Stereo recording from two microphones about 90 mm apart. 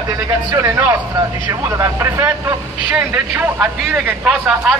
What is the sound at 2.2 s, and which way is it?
A man's voice, 15° right (ahead or behind).